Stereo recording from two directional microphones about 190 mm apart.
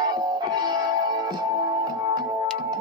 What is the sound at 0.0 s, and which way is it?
Music, 20° right (ahead or behind).